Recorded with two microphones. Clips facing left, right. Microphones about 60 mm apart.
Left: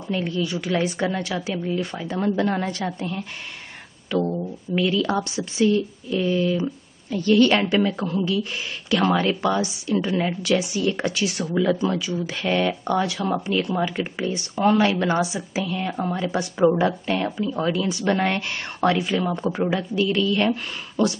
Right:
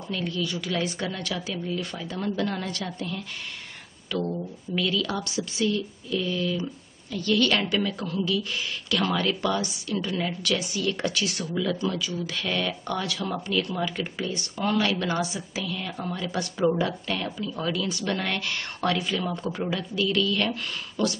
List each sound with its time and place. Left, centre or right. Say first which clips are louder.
0.1 s a woman's voice: left 5 dB; left